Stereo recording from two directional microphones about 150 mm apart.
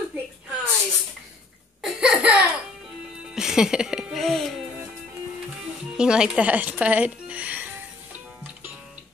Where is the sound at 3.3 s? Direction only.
5° right (ahead or behind).